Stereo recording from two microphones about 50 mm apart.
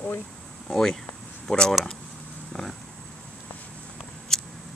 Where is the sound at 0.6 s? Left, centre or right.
Centre.